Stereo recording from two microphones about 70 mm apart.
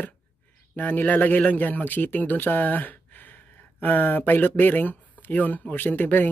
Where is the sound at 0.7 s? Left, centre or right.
Left.